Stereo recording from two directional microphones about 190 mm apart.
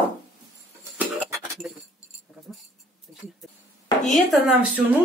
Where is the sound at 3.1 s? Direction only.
5° left (ahead or behind).